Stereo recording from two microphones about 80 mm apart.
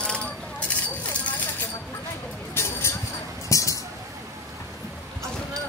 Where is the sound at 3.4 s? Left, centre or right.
Left.